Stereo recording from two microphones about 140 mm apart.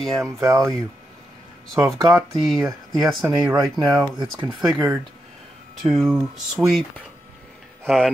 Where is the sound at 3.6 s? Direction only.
25° right (ahead or behind).